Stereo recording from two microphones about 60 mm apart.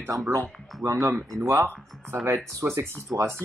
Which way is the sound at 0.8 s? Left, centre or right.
Right.